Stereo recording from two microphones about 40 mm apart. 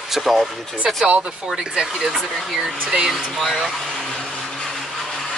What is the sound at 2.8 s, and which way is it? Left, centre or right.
Speech, centre.